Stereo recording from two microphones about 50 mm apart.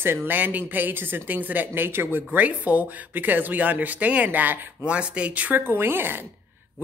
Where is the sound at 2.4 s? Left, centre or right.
Right.